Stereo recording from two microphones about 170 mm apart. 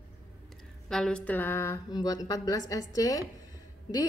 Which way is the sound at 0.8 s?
5° left (ahead or behind).